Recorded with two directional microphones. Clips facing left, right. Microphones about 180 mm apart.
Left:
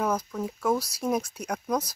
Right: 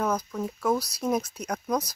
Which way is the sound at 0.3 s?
Centre (ahead or behind).